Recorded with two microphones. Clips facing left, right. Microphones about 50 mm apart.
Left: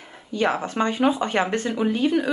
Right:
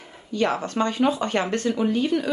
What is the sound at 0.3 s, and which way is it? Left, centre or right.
Speech, centre.